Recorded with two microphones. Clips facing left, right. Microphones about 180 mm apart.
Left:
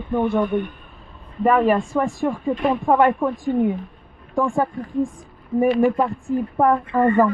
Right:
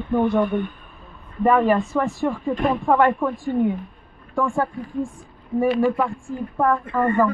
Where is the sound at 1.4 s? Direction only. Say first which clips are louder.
Even; 15° left (ahead or behind).